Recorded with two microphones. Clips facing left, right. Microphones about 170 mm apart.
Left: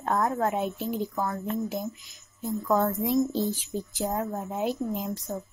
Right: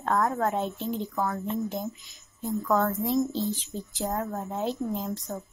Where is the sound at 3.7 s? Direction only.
15° left (ahead or behind).